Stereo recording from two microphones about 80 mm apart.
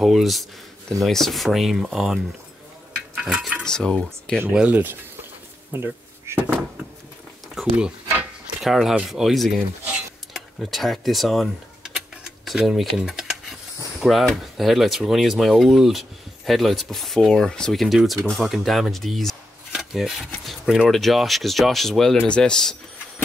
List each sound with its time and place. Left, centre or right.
0.0 s speech: centre
3.2 s dishes: centre
3.6 s speech: centre
4.5 s speech: centre
5.7 s duck: right
7.6 s speech: centre